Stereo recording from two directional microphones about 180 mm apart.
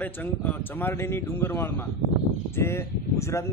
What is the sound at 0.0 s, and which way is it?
Speech, 10° left (ahead or behind).